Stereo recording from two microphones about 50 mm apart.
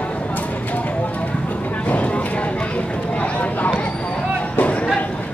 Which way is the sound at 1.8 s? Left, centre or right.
Left.